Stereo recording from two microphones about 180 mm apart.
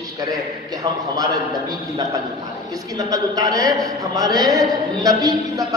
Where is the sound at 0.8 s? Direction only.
20° right (ahead or behind).